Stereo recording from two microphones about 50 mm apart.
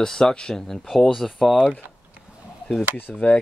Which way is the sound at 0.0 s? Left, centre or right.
Centre.